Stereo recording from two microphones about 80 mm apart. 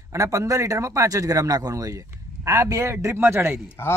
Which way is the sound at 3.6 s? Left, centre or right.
Left.